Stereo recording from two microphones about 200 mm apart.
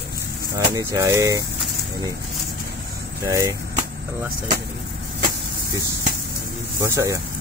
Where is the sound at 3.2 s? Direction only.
15° right (ahead or behind).